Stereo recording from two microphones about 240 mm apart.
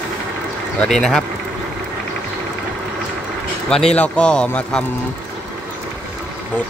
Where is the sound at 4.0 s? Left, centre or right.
Centre.